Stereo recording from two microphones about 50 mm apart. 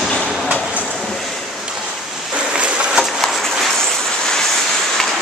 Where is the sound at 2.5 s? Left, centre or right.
Centre.